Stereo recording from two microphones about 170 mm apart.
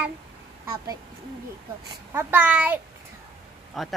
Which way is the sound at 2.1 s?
15° right (ahead or behind).